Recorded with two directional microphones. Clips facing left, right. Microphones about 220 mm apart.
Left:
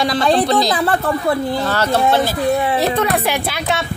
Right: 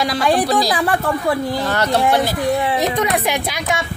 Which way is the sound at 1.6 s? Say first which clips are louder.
Left 1 dB; 15° right (ahead or behind).